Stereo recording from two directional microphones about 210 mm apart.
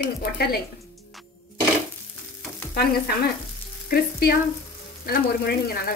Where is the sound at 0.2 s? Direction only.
45° left (ahead or behind).